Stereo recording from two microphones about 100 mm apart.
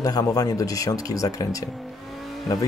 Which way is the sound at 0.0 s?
40° left (ahead or behind).